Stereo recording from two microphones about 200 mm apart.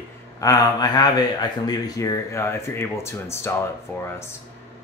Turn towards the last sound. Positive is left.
turn(degrees=10)  # may be behind; listen again after turning